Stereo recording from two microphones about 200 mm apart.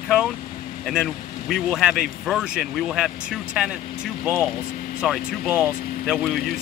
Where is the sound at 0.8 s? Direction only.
Centre (ahead or behind).